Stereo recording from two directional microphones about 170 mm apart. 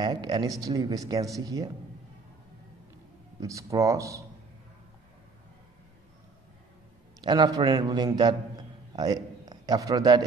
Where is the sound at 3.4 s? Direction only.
20° right (ahead or behind).